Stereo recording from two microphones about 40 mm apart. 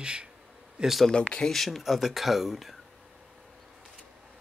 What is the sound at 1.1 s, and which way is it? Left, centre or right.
Speech, left.